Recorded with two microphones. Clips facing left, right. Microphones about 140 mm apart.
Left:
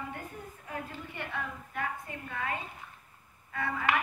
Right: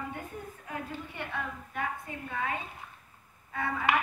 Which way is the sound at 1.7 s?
15° right (ahead or behind).